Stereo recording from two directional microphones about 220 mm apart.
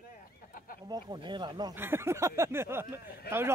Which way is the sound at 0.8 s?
20° right (ahead or behind).